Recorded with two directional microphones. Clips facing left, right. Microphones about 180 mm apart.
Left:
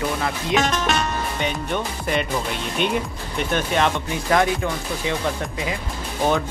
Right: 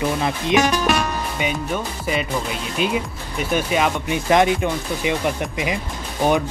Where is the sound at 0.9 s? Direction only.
10° right (ahead or behind).